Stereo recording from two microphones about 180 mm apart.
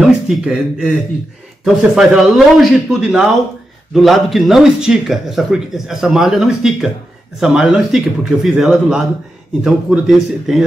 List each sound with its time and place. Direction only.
0.0 s speech: 5° right (ahead or behind)